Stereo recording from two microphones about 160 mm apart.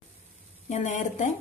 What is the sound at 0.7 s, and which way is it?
Speech, 50° left (ahead or behind).